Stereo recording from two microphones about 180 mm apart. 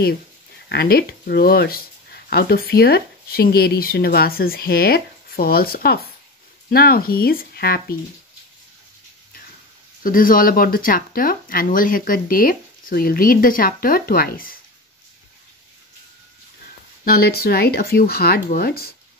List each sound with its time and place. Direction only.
0.7 s speech: 60° left (ahead or behind)
10.0 s speech: 50° left (ahead or behind)
17.0 s speech: 60° left (ahead or behind)